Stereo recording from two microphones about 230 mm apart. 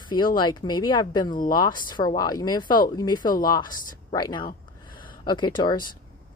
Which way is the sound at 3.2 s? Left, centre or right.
Left.